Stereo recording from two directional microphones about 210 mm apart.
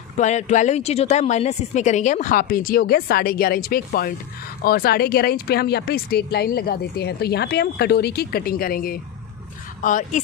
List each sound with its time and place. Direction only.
0.2 s speech: 35° left (ahead or behind)